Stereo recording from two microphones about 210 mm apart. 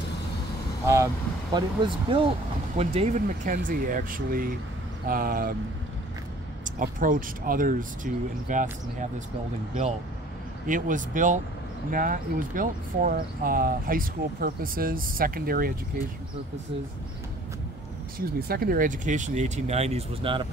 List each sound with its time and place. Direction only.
1.5 s speech: 20° right (ahead or behind); by 5.5 s 45° right (ahead or behind)
6.6 s speech: 40° right (ahead or behind)
10.7 s speech: 40° right (ahead or behind)
18.1 s speech: 45° right (ahead or behind); by 20.4 s 25° right (ahead or behind)